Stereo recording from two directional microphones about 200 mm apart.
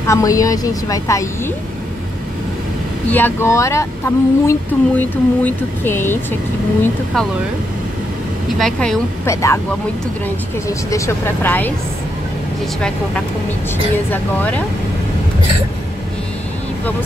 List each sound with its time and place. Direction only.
0.0 s speech: 15° left (ahead or behind)
3.1 s speech: 10° left (ahead or behind)
8.5 s speech: 5° left (ahead or behind)
9.3 s speech: 15° left (ahead or behind)
14.1 s speech: 10° left (ahead or behind)